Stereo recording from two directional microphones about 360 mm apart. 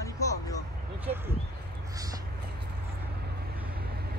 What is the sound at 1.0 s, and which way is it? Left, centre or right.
Speech, centre.